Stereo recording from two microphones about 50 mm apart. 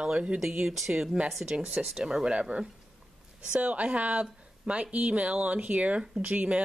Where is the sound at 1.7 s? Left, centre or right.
Right.